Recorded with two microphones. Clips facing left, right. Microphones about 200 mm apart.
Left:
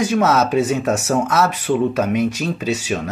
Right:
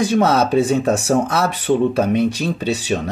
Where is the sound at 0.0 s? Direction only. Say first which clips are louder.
Right 1 dB; 35° right (ahead or behind).